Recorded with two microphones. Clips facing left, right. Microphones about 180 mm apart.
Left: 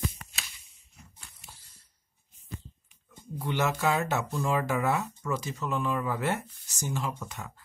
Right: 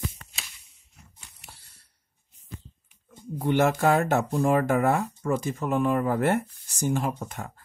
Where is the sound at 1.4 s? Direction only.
65° right (ahead or behind).